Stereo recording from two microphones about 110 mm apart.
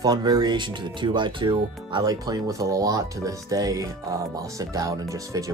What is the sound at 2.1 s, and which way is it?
Speech, 35° right (ahead or behind).